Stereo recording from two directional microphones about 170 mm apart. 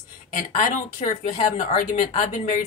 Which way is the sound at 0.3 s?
45° left (ahead or behind).